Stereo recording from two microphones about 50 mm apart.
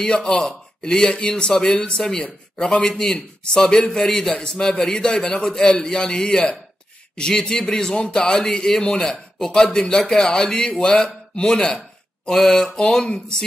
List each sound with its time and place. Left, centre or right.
0.0 s a man's voice: centre